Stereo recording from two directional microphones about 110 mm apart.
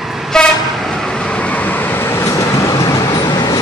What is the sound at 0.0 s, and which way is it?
Vehicle, centre (ahead or behind).